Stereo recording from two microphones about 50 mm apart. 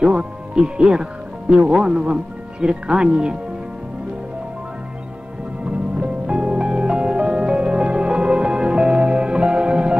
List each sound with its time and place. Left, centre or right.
0.0 s speech: centre
5.7 s music: right